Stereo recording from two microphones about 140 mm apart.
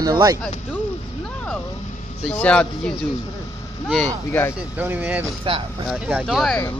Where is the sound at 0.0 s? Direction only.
25° right (ahead or behind).